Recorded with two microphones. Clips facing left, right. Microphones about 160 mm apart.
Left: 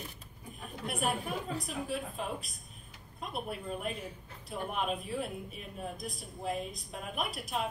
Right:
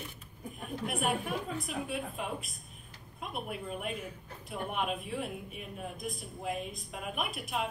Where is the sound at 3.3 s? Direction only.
35° left (ahead or behind).